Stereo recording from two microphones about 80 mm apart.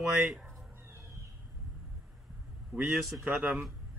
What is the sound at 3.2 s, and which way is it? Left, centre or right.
Speech, right.